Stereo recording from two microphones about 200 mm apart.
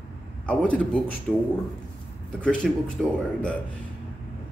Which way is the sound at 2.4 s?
5° left (ahead or behind).